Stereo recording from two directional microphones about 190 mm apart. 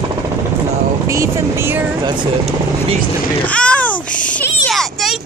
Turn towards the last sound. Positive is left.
turn(degrees=0)  # may be behind; listen again after turning